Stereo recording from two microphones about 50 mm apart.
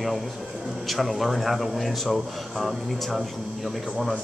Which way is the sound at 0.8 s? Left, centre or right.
Centre.